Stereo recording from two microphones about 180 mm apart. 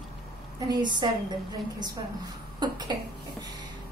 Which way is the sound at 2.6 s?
25° right (ahead or behind).